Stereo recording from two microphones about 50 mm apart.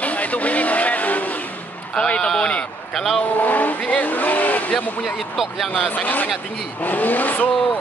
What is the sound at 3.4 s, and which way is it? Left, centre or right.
Speech, left.